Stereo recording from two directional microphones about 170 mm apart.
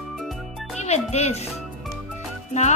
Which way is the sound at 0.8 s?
40° left (ahead or behind).